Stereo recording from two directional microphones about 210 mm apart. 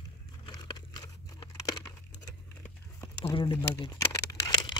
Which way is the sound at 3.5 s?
15° left (ahead or behind).